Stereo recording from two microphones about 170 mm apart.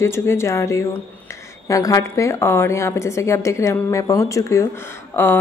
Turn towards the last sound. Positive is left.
turn(degrees=10)  # may be behind; listen again after turning